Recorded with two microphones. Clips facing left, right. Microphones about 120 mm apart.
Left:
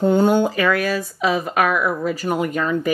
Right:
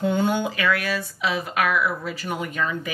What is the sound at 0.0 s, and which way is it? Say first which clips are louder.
Speech: left 7 dB; 40° left (ahead or behind).